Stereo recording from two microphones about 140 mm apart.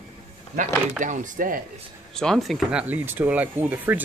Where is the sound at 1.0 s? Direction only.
70° right (ahead or behind).